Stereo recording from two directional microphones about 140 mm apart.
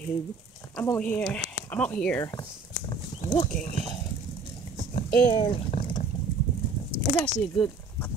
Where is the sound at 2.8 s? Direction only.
50° left (ahead or behind).